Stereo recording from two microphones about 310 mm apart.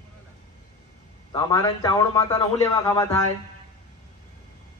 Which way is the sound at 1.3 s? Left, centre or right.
Centre.